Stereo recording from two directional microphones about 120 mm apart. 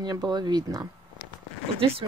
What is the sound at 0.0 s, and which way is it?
Speech, 35° right (ahead or behind).